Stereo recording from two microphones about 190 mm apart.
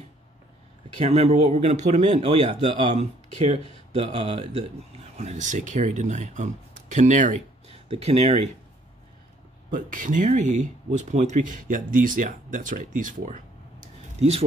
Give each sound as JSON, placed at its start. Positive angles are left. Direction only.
{"t": 0.9, "sound": "speech", "side_deg": -35}
{"t": 9.7, "sound": "speech", "side_deg": -45}